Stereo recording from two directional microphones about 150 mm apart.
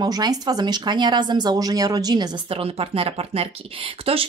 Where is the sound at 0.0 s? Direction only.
25° right (ahead or behind).